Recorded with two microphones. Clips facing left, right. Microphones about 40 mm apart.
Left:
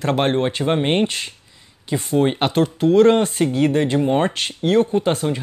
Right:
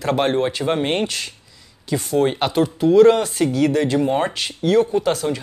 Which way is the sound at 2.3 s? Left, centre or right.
Left.